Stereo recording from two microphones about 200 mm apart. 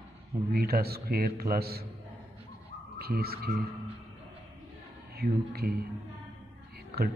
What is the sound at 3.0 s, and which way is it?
Speech, 50° right (ahead or behind).